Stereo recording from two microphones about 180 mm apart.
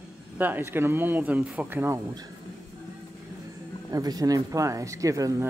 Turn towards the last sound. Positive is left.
turn(degrees=-20)  # may be behind; listen again after turning